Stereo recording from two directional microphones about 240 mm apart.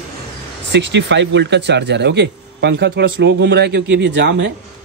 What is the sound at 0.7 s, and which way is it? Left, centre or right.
Speech, right.